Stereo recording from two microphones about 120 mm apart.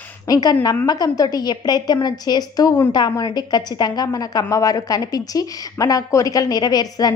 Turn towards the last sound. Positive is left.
turn(degrees=35)  # may be behind; listen again after turning